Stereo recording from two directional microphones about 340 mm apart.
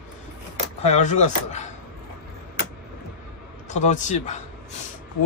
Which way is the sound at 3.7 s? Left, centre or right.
Left.